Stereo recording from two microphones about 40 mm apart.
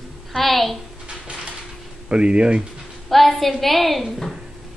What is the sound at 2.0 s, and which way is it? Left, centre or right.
Speech, right.